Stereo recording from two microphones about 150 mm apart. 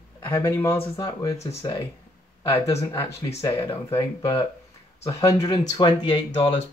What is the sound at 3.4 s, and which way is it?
Speech, 20° left (ahead or behind).